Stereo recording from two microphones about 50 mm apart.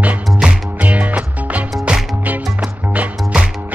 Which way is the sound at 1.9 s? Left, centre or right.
Centre.